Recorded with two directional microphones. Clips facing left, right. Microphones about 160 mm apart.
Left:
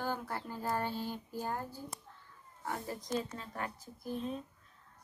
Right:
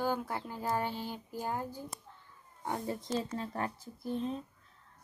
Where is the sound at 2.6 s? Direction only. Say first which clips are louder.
Right 3 dB; 25° right (ahead or behind).